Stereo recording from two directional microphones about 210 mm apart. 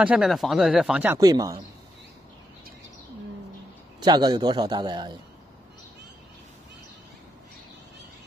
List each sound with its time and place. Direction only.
0.0 s speech: 5° right (ahead or behind)
1.2 s speech: 20° right (ahead or behind)
4.0 s a man's voice: 20° right (ahead or behind)